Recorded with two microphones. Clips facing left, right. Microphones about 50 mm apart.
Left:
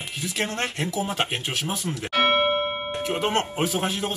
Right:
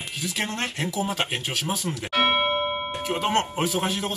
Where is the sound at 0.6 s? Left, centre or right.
Centre.